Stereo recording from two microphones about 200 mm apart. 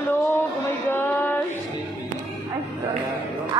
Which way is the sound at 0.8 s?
10° left (ahead or behind).